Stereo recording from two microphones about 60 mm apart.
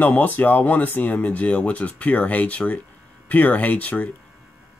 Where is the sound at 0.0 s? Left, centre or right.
Left.